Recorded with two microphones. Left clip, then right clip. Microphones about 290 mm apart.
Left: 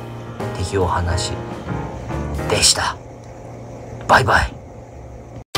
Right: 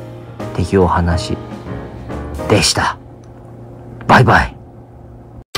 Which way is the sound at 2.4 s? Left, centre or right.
Right.